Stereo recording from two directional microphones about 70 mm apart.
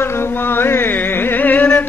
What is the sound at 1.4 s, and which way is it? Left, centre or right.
Carnatic music, left.